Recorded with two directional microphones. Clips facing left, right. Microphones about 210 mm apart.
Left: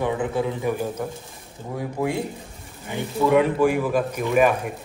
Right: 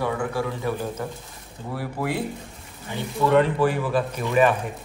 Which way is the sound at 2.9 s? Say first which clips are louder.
Left 1 dB; 10° left (ahead or behind).